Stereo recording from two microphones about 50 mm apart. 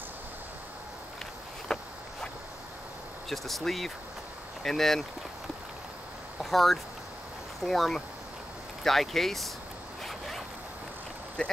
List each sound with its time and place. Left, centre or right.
1.7 s walk: centre
3.3 s speech: centre
6.4 s speech: centre
10.0 s zipper: centre
11.4 s speech: centre